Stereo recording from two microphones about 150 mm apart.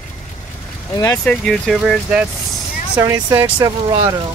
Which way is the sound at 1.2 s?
5° left (ahead or behind).